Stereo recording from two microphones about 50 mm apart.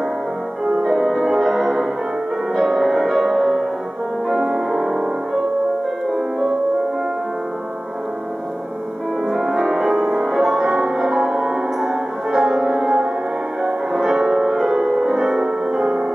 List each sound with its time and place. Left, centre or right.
0.7 s music: centre
9.3 s music: centre